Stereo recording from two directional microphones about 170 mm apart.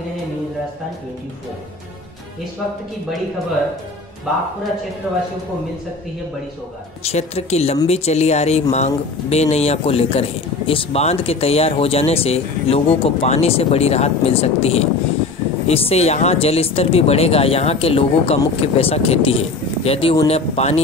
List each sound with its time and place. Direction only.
5.1 s speech: centre (ahead or behind)
7.1 s speech: 40° left (ahead or behind)